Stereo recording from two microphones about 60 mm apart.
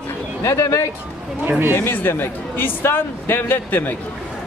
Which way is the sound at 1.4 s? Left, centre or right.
Right.